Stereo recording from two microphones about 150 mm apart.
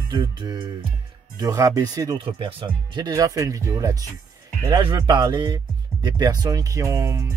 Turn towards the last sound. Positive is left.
turn(degrees=-20)  # may be behind; listen again after turning